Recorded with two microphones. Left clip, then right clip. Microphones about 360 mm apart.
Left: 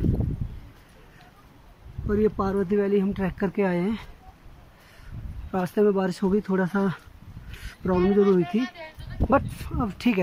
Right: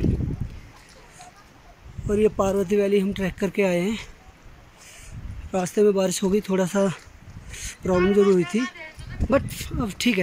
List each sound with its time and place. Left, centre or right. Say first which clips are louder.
2.0 s speech: right 3 dB; centre
5.5 s speech: right 3 dB; centre
8.5 s speech: right 2 dB; left
9.3 s speech: even; centre